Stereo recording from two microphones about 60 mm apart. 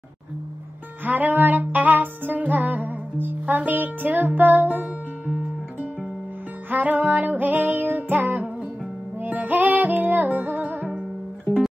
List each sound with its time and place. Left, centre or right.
1.0 s music: right